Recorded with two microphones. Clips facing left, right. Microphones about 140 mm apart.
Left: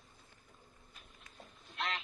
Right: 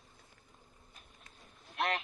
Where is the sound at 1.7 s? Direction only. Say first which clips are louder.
Right 6 dB; 65° right (ahead or behind).